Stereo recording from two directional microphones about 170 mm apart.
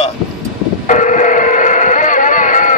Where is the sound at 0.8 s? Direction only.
45° left (ahead or behind).